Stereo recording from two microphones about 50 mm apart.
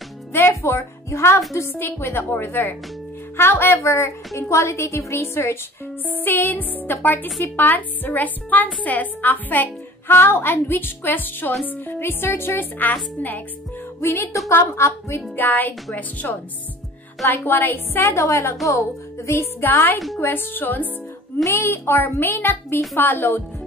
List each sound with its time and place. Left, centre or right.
0.3 s a woman's voice: left
1.7 s a woman's voice: left
2.2 s a woman's voice: left
6.0 s a woman's voice: left
10.1 s a woman's voice: left
14.0 s a woman's voice: left
14.6 s a woman's voice: left
15.3 s a woman's voice: left
17.3 s a woman's voice: left
18.1 s a woman's voice: left
21.5 s a woman's voice: left